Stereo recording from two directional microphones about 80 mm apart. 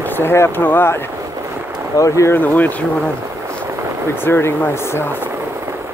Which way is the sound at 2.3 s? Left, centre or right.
Left.